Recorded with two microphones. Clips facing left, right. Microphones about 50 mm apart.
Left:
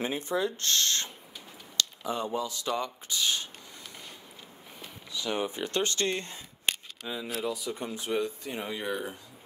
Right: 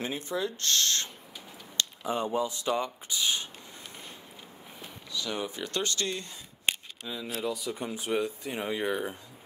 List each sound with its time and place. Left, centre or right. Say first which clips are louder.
0.0 s speech: left 2 dB; left
1.8 s speech: right 1 dB; right
5.1 s speech: left 2 dB; centre
7.1 s speech: even; centre
7.5 s speech: even; centre
7.8 s speech: right 1 dB; centre